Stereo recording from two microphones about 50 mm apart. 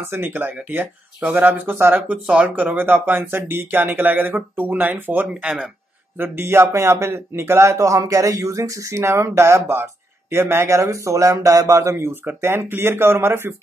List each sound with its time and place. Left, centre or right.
0.1 s speech: right
2.3 s speech: right
5.3 s speech: centre
6.1 s speech: right
12.4 s speech: right